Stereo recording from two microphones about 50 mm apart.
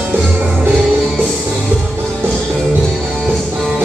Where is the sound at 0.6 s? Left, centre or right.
Right.